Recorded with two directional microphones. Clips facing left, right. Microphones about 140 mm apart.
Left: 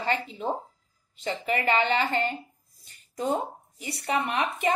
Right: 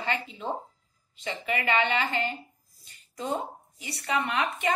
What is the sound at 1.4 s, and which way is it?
Speech, 30° left (ahead or behind).